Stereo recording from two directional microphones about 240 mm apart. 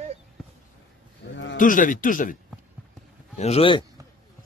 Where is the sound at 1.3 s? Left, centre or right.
Left.